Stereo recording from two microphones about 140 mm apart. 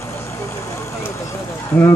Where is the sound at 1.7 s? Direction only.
20° left (ahead or behind).